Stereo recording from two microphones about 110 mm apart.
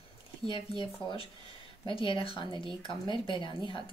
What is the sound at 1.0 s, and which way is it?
Speech, 55° left (ahead or behind).